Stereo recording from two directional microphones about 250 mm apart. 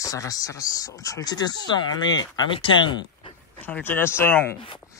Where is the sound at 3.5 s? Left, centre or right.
Centre.